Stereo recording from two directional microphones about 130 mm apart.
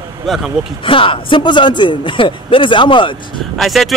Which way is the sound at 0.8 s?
40° left (ahead or behind).